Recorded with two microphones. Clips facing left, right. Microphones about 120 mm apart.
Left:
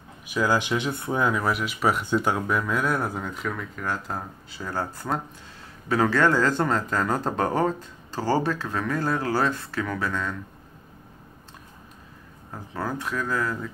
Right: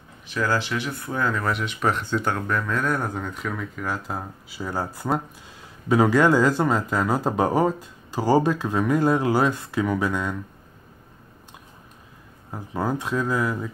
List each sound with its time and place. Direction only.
0.3 s speech: 10° left (ahead or behind); by 10.3 s 15° right (ahead or behind)
12.7 s speech: 20° right (ahead or behind)